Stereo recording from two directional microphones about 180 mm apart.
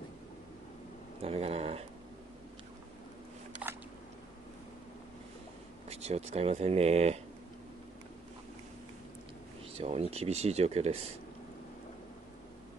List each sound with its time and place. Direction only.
1.2 s speech: 35° right (ahead or behind)
5.9 s speech: 35° right (ahead or behind)
9.8 s speech: 35° right (ahead or behind)